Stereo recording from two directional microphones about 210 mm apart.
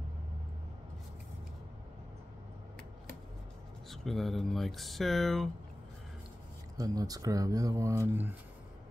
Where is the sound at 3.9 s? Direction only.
Centre (ahead or behind).